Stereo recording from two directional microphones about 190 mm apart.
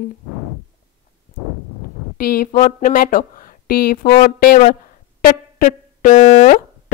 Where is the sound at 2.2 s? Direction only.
50° left (ahead or behind).